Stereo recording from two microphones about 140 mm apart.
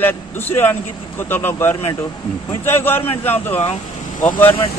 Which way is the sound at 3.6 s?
60° left (ahead or behind).